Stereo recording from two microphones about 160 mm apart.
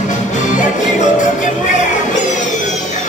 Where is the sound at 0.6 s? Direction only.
50° left (ahead or behind).